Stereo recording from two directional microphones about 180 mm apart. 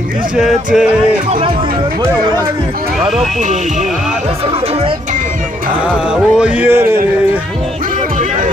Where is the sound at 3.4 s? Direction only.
40° right (ahead or behind).